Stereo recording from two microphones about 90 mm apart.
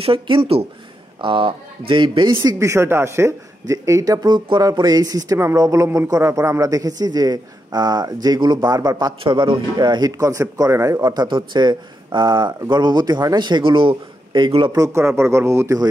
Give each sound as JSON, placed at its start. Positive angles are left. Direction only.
{"t": 0.0, "sound": "speech", "side_deg": -90}
{"t": 1.2, "sound": "speech", "side_deg": -70}
{"t": 2.4, "sound": "a man's voice", "side_deg": -35}
{"t": 9.2, "sound": "a man's voice", "side_deg": -75}
{"t": 11.1, "sound": "speech", "side_deg": -50}
{"t": 14.7, "sound": "a man's voice", "side_deg": -35}